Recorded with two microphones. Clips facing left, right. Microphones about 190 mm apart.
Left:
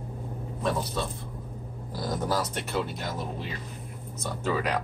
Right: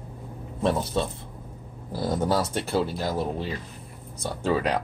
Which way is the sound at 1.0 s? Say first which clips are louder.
Right 5 dB; 25° right (ahead or behind).